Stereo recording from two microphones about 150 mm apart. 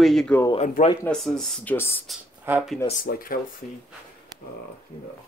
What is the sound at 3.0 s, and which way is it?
Speech, 70° left (ahead or behind).